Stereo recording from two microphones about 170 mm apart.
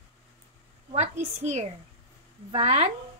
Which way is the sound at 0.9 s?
40° right (ahead or behind).